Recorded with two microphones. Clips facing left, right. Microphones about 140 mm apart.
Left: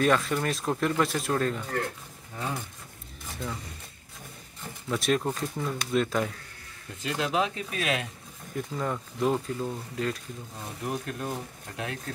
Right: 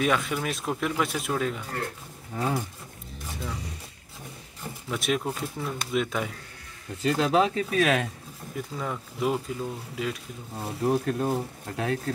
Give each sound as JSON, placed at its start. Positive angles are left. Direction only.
{"t": 0.0, "sound": "speech", "side_deg": -5}
{"t": 2.3, "sound": "speech", "side_deg": -40}
{"t": 3.3, "sound": "vehicle", "side_deg": 0}
{"t": 4.8, "sound": "speech", "side_deg": 0}
{"t": 7.0, "sound": "speech", "side_deg": -35}
{"t": 8.5, "sound": "speech", "side_deg": 0}
{"t": 10.5, "sound": "speech", "side_deg": -35}